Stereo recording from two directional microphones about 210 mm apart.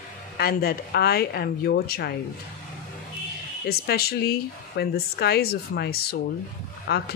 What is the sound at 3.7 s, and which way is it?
Speech, 50° left (ahead or behind).